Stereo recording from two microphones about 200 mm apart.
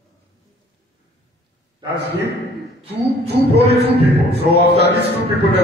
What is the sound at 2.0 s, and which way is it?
Speech, 55° left (ahead or behind).